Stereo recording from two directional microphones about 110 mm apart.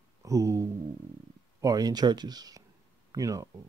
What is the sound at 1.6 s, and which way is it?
Speech, 35° right (ahead or behind).